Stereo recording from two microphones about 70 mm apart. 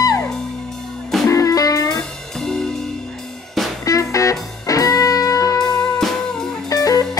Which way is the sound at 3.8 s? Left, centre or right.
Left.